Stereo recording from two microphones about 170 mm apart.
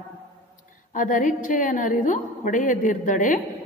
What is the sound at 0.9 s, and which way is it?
A woman's voice, 50° left (ahead or behind).